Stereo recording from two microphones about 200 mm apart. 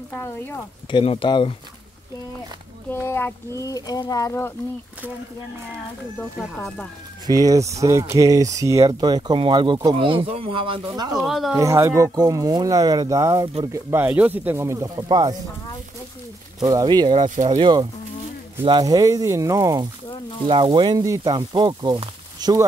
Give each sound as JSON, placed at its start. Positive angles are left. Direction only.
{"t": 0.8, "sound": "speech", "side_deg": 25}
{"t": 2.9, "sound": "speech", "side_deg": 10}
{"t": 6.4, "sound": "speech", "side_deg": 0}
{"t": 7.2, "sound": "speech", "side_deg": -15}
{"t": 11.1, "sound": "speech", "side_deg": 0}
{"t": 11.5, "sound": "speech", "side_deg": -15}
{"t": 16.5, "sound": "speech", "side_deg": -20}